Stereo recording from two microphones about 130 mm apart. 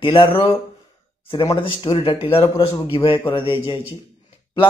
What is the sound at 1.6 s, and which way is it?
Speech, 45° left (ahead or behind).